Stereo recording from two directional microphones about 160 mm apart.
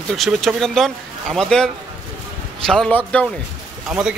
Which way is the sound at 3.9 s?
5° right (ahead or behind).